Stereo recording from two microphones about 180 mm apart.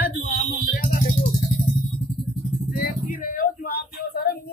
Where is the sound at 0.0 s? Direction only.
50° left (ahead or behind).